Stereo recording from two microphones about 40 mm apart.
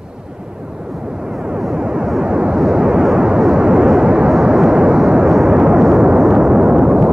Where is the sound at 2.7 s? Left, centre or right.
Right.